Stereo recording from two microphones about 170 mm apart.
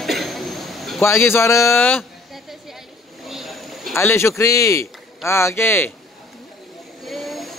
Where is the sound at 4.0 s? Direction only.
15° left (ahead or behind).